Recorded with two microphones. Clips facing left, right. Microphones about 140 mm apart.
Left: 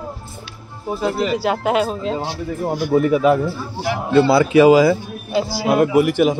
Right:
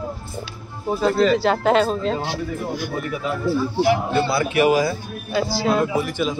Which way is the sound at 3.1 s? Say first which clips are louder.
Left 12 dB; 90° left.